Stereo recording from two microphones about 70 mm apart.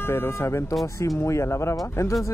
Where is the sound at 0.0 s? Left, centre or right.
Left.